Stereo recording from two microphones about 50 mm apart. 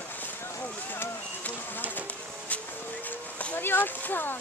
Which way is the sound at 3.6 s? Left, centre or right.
Left.